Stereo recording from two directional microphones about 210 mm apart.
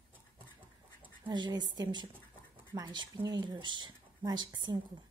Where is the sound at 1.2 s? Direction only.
20° right (ahead or behind).